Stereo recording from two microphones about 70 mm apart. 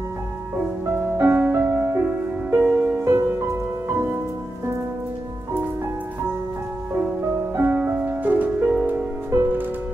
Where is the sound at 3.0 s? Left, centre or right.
Right.